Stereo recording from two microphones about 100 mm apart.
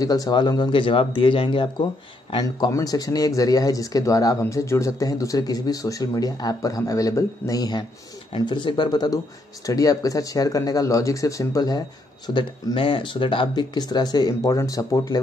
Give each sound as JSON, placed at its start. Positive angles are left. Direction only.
{"t": 0.0, "sound": "speech", "side_deg": 40}
{"t": 2.7, "sound": "speech", "side_deg": 40}
{"t": 8.4, "sound": "speech", "side_deg": 50}
{"t": 12.4, "sound": "speech", "side_deg": 55}